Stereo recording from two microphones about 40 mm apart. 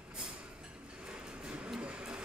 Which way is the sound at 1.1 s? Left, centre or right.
Right.